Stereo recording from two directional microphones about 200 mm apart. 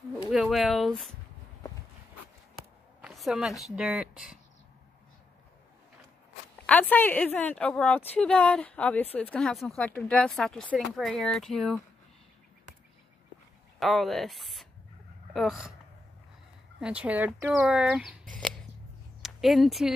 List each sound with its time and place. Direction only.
0.3 s speech: centre (ahead or behind)
3.0 s speech: centre (ahead or behind)
6.6 s a woman's voice: 10° left (ahead or behind)
13.7 s speech: centre (ahead or behind)
16.8 s speech: 5° right (ahead or behind)
19.2 s speech: centre (ahead or behind)